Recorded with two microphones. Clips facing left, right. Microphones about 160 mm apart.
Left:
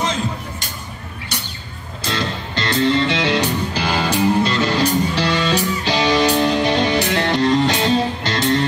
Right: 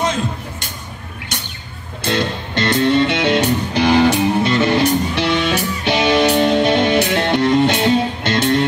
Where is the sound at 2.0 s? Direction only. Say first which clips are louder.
Right 4 dB; 65° right (ahead or behind).